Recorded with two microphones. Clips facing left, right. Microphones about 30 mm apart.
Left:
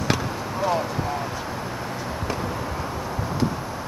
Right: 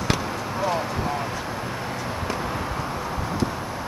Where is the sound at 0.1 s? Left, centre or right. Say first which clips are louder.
Even; centre.